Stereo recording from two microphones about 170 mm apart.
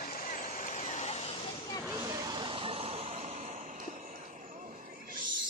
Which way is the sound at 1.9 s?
20° right (ahead or behind).